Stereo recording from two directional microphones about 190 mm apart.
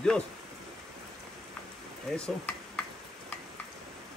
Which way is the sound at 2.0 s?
5° left (ahead or behind).